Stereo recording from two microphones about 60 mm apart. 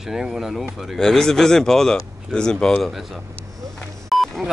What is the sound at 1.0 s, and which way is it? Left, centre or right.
Speech, centre.